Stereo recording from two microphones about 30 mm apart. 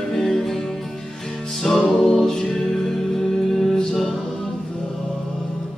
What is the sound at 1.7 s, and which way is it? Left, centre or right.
Music, centre.